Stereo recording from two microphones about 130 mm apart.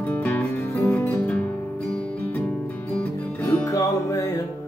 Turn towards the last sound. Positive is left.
turn(degrees=20)  # may be behind; listen again after turning